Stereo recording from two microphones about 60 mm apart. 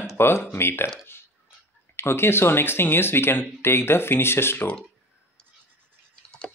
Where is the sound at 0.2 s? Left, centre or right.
Left.